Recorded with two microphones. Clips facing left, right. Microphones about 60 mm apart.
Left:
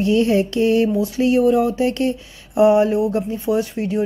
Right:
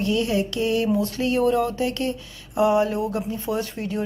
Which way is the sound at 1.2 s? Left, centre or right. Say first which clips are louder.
Left 7 dB; centre.